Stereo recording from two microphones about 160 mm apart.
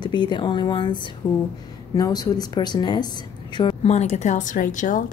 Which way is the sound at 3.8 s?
40° left (ahead or behind).